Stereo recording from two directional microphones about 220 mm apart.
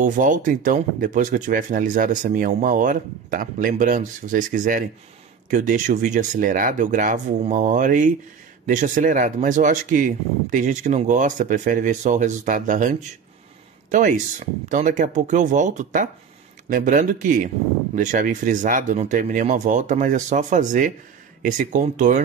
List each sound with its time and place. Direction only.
0.0 s speech: 35° right (ahead or behind)